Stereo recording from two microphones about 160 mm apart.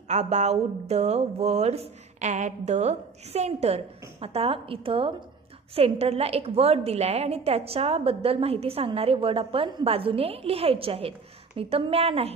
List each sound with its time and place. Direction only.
0.1 s a woman's voice: 45° right (ahead or behind)